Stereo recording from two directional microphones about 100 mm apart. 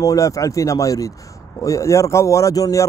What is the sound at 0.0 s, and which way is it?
Speech, 35° left (ahead or behind).